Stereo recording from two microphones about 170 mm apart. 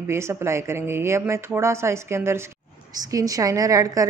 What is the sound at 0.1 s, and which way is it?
A woman's voice, 15° right (ahead or behind).